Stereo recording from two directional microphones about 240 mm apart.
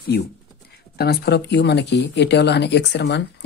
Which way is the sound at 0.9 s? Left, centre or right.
Left.